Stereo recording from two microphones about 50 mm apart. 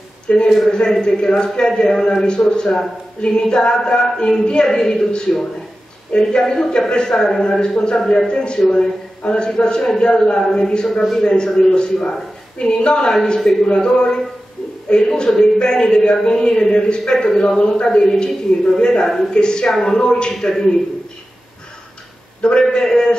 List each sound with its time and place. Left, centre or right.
0.3 s a man's voice: left; by 11.2 s centre
11.2 s a man's voice: centre
22.4 s speech: centre